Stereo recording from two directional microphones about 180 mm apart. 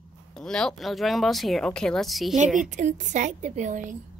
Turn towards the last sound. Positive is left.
turn(degrees=-45)  # may be behind; listen again after turning